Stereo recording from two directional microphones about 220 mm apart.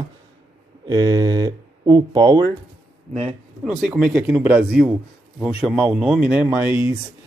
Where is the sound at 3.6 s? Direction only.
5° right (ahead or behind).